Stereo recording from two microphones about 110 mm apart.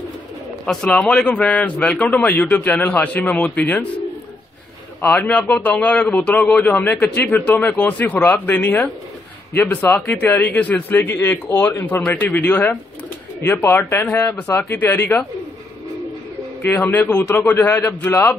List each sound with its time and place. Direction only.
0.7 s a man's voice: 5° left (ahead or behind)
5.0 s a man's voice: 15° left (ahead or behind)
16.7 s a man's voice: 15° left (ahead or behind)